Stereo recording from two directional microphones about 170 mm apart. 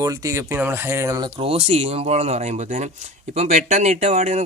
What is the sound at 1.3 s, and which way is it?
Speech, 35° right (ahead or behind).